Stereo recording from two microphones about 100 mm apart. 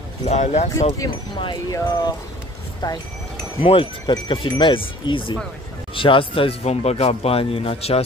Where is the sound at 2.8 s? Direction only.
45° left (ahead or behind).